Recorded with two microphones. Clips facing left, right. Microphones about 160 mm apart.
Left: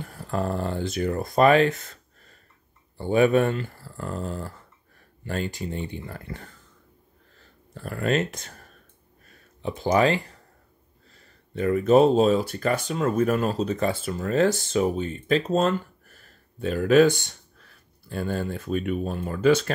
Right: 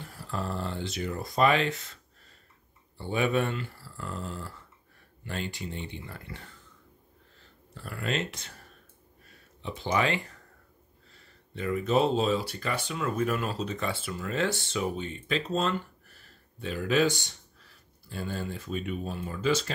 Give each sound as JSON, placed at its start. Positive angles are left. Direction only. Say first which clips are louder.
{"t": 0.0, "sound": "speech", "louder": "left 7 dB", "side_deg": 50}
{"t": 3.0, "sound": "speech", "louder": "left 8 dB", "side_deg": 45}
{"t": 7.7, "sound": "speech", "louder": "left 7 dB", "side_deg": 45}
{"t": 9.6, "sound": "speech", "louder": "left 7 dB", "side_deg": 45}